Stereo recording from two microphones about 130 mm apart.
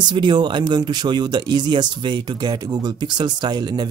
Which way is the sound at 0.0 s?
35° right (ahead or behind).